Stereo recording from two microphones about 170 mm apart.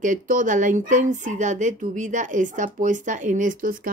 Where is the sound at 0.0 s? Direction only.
50° right (ahead or behind).